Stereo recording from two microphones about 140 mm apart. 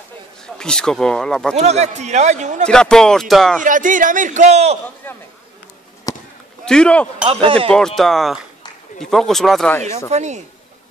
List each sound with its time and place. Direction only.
0.6 s speech: 5° left (ahead or behind)
1.6 s speech: 50° right (ahead or behind)
2.6 s speech: 5° left (ahead or behind)
3.6 s a man's voice: 70° right (ahead or behind); by 4.7 s 55° right (ahead or behind)
6.1 s a sound: 25° left (ahead or behind)
6.6 s speech: 5° left (ahead or behind)
7.2 s speech: 40° right (ahead or behind)
7.7 s speech: 5° left (ahead or behind)
10.1 s speech: 55° right (ahead or behind)